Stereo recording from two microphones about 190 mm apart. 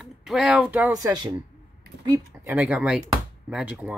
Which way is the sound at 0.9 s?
20° right (ahead or behind).